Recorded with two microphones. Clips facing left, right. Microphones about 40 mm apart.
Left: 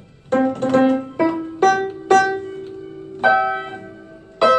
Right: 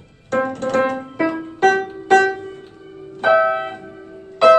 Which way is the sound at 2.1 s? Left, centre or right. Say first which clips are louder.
Right 1 dB; right.